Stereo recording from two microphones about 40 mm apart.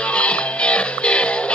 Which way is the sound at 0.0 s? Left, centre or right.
Left.